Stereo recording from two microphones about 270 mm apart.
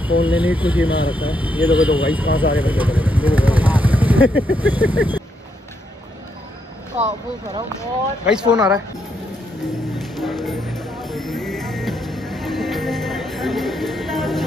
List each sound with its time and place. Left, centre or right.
0.0 s speech: centre
7.0 s speech: right
8.3 s speech: centre
9.9 s music: centre